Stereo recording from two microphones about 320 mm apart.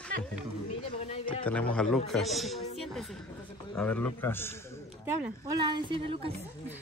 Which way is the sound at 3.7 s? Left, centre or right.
Centre.